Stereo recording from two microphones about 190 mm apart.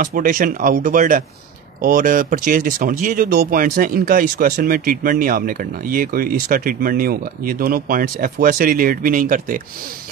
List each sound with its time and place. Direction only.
0.0 s speech: 45° right (ahead or behind)